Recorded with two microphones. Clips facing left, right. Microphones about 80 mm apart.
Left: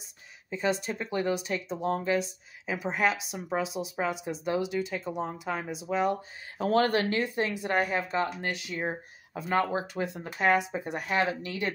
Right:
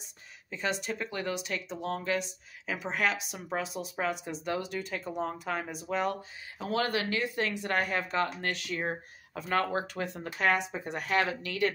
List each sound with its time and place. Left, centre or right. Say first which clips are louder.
0.5 s speech: left 4 dB; left
6.6 s speech: left 6 dB; left
7.4 s speech: left 2 dB; centre